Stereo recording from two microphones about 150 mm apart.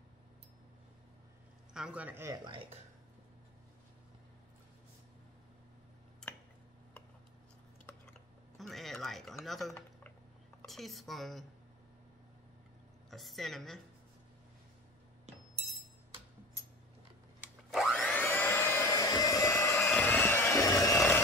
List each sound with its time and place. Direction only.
1.7 s a man's voice: 5° right (ahead or behind)
2.3 s speech: 30° right (ahead or behind)
8.5 s speech: centre (ahead or behind)
13.1 s speech: centre (ahead or behind)
17.6 s blender: centre (ahead or behind)
18.0 s vacuum cleaner: 10° left (ahead or behind)